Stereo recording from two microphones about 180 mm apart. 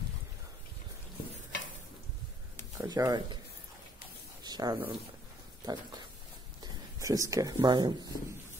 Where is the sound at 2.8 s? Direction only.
20° right (ahead or behind).